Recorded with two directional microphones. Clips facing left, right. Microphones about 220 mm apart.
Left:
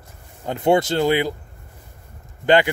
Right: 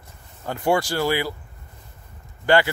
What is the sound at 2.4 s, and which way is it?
Speech, 20° left (ahead or behind).